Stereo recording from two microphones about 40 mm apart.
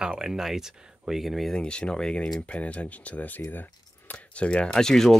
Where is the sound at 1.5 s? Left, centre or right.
Left.